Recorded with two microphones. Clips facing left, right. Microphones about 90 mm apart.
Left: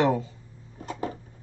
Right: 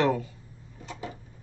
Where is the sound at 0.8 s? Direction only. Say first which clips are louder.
Left 6 dB; 45° left (ahead or behind).